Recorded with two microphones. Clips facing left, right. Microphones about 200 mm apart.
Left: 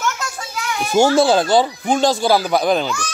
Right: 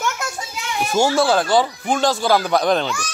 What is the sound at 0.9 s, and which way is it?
Speech, 20° left (ahead or behind).